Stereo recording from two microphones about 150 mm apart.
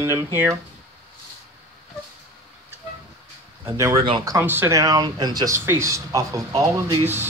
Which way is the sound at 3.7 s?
20° right (ahead or behind).